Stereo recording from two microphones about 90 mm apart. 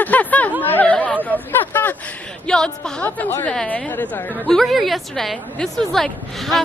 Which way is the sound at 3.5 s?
10° left (ahead or behind).